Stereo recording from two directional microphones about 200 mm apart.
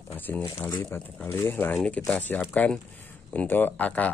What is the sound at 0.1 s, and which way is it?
Speech, 10° left (ahead or behind).